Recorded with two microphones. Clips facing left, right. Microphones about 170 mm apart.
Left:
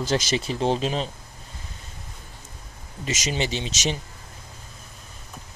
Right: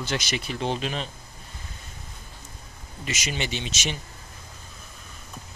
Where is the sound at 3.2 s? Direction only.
35° left (ahead or behind).